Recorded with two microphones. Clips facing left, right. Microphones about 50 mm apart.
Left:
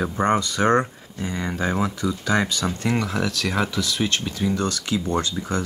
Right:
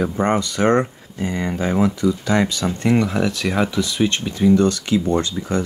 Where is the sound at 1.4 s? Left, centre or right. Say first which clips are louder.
Right 4 dB; centre.